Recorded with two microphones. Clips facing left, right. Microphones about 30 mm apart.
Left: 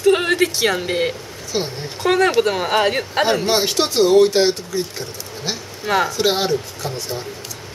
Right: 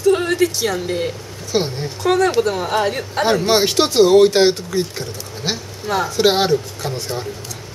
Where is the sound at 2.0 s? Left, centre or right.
Left.